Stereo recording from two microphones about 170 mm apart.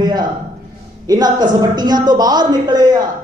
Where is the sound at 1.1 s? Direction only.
25° right (ahead or behind).